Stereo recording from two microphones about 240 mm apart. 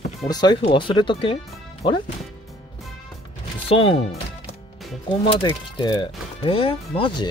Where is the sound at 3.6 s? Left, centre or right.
Left.